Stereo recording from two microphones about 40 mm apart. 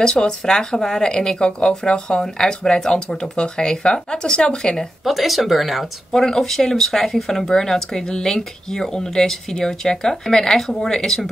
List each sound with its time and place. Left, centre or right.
0.0 s speech: centre
5.0 s speech: centre
6.1 s speech: centre